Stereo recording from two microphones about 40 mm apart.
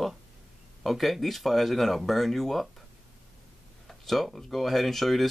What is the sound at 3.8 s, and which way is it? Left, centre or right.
Speech, centre.